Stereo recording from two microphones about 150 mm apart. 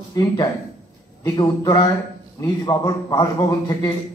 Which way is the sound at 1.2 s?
25° left (ahead or behind).